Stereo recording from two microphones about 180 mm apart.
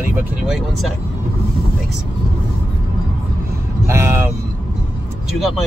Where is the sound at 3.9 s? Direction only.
15° right (ahead or behind).